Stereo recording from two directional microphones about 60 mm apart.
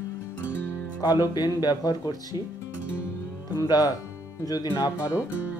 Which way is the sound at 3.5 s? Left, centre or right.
Left.